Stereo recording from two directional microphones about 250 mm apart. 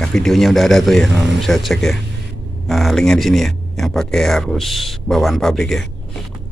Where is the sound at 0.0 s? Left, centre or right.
Centre.